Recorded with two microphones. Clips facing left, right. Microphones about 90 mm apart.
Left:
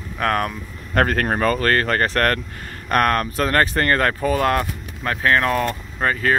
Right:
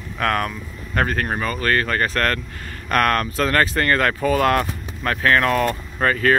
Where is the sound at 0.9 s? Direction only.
55° left (ahead or behind).